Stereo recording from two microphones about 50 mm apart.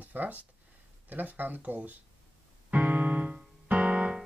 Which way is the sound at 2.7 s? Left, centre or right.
Right.